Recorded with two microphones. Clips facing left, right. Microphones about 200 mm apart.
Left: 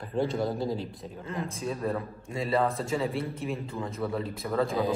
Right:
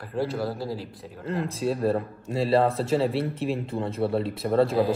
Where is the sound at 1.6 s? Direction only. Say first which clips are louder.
Right 8 dB; 75° right (ahead or behind).